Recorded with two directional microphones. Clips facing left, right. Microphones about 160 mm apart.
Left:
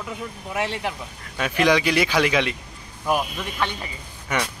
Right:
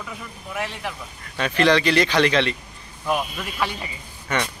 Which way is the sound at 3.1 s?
Centre (ahead or behind).